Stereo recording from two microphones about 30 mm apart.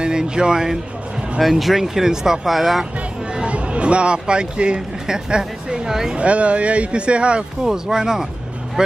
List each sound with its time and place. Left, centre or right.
0.0 s speech: right
1.4 s speech: centre
2.4 s speech: centre
3.4 s speech: right
5.9 s speech: centre
6.1 s speech: right
7.6 s speech: centre